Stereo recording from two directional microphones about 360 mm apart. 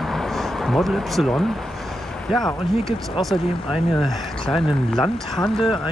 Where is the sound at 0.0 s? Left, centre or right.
Centre.